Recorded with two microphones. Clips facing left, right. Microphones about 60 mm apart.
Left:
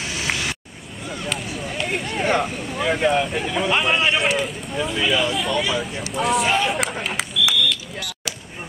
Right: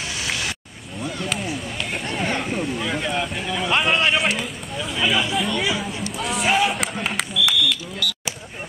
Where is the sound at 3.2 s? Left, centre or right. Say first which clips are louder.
Left 3 dB; centre.